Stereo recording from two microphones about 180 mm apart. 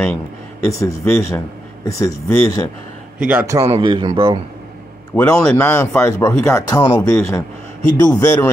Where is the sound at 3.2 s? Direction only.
15° right (ahead or behind).